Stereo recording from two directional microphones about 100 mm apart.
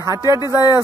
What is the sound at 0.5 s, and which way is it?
Speech, 35° left (ahead or behind).